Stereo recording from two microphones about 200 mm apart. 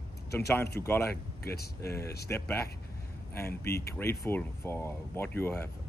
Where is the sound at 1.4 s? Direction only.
50° left (ahead or behind).